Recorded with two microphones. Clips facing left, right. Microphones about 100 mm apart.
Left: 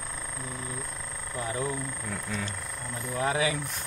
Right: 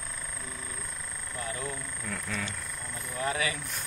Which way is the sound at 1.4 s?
25° left (ahead or behind).